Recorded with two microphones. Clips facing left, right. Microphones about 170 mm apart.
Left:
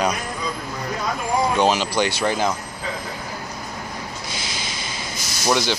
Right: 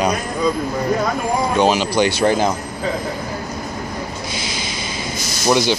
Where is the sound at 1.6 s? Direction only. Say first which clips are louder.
Right 7 dB; 10° right (ahead or behind).